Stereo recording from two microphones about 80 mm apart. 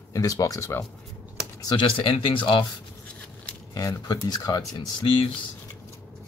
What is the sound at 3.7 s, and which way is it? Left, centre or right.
Speech, left.